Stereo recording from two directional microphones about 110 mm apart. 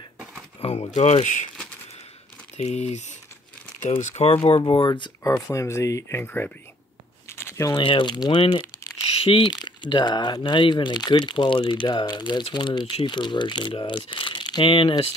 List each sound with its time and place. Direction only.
0.6 s speech: 75° left (ahead or behind)
2.5 s speech: 90° left
4.0 s speech: 80° left; by 5.1 s 45° left (ahead or behind)
5.2 s speech: 25° left (ahead or behind)
7.2 s a sound: 25° left (ahead or behind)
7.7 s speech: 50° left (ahead or behind)
9.0 s crumpling: 60° left (ahead or behind)
9.4 s speech: 40° left (ahead or behind)